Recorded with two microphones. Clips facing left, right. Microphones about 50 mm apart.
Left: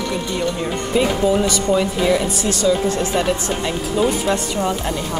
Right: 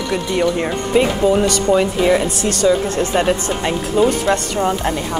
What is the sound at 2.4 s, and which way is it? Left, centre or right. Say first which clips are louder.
Speech: right 2 dB; right.